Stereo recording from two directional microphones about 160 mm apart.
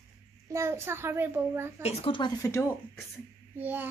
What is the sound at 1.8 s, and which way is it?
Speech, 40° left (ahead or behind).